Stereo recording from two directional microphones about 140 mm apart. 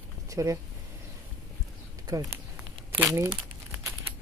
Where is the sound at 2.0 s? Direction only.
25° right (ahead or behind).